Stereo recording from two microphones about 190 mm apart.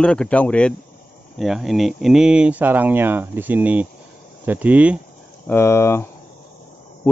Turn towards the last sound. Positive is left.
turn(degrees=15)  # may be behind; listen again after turning